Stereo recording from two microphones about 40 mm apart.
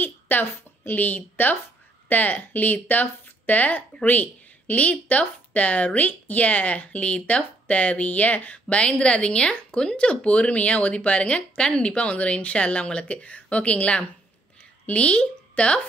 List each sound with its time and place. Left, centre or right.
0.4 s a woman's voice: left
1.0 s speech: left